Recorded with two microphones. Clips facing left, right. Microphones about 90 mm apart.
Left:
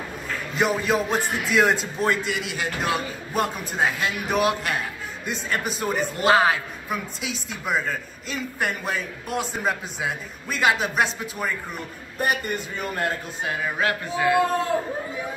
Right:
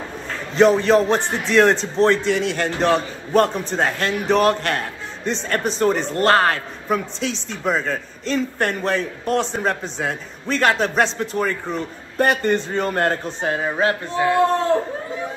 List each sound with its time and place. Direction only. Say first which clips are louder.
0.6 s a man's voice: right 9 dB; 5° left (ahead or behind)
12.8 s speech: right 6 dB; 40° right (ahead or behind)
14.3 s speech: right 5 dB; 5° left (ahead or behind)